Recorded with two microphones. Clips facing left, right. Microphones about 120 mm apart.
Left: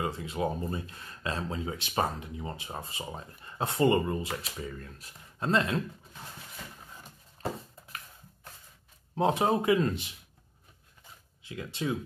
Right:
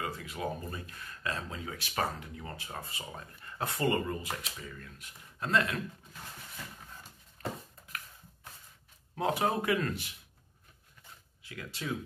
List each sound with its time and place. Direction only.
0.0 s speech: 25° left (ahead or behind)
7.4 s a sound: 25° left (ahead or behind)
9.1 s speech: 25° left (ahead or behind)
11.4 s speech: 25° left (ahead or behind)